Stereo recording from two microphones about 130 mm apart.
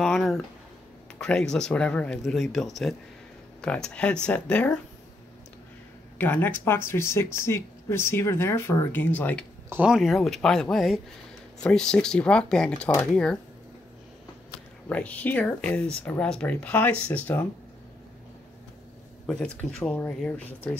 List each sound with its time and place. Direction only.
0.0 s speech: centre (ahead or behind)
6.1 s speech: 15° left (ahead or behind)
9.8 s speech: centre (ahead or behind)
14.9 s speech: 10° left (ahead or behind)
19.2 s speech: 5° left (ahead or behind)